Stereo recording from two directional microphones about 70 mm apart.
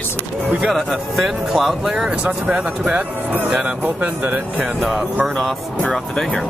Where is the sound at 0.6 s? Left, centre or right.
Centre; by 4.6 s right.